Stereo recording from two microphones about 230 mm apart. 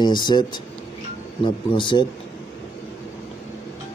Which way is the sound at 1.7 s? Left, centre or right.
Left.